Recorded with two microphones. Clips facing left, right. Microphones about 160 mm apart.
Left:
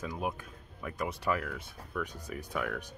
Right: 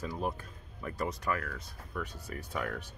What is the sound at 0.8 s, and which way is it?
Speech, 5° left (ahead or behind).